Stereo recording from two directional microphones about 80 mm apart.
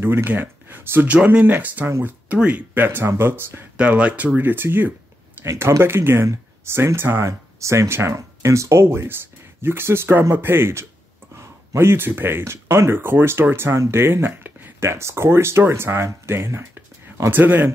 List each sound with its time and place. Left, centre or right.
0.0 s speech: right
1.9 s speech: right
2.2 s speech: centre
3.7 s speech: centre
5.4 s speech: right